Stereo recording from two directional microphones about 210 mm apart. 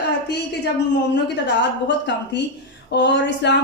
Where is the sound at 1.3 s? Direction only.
55° left (ahead or behind).